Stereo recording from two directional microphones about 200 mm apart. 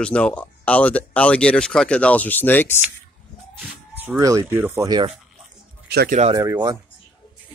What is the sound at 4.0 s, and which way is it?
Speech, 15° right (ahead or behind).